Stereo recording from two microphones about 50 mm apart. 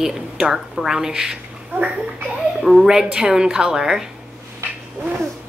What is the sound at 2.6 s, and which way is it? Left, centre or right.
A woman's voice, centre.